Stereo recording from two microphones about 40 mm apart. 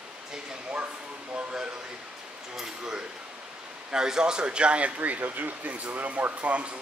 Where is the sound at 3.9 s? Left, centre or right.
Centre.